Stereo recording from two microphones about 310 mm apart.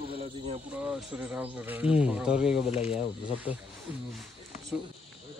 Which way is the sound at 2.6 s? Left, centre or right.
Centre.